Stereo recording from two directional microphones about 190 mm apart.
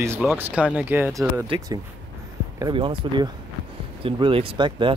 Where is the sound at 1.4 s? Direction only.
30° right (ahead or behind).